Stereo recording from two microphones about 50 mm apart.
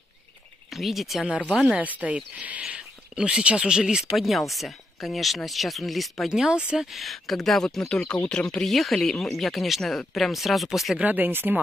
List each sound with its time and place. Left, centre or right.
0.7 s speech: centre
1.8 s speech: right
4.1 s speech: centre
6.3 s speech: centre
6.8 s speech: centre
8.6 s speech: centre
11.0 s speech: right
11.2 s speech: right